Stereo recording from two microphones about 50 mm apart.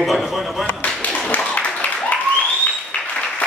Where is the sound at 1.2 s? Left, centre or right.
Left.